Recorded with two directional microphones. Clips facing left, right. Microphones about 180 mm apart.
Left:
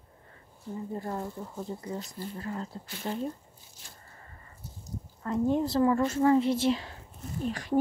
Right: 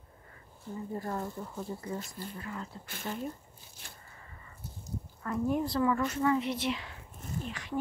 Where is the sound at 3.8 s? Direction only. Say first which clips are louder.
Right 2 dB; 60° right (ahead or behind).